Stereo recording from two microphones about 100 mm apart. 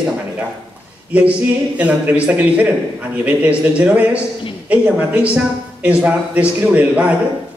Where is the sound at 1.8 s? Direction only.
15° right (ahead or behind).